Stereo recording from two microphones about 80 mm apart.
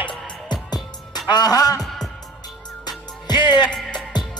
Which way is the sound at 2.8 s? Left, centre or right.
Left.